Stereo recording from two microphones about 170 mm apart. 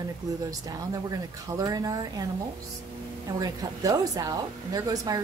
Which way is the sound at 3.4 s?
20° right (ahead or behind).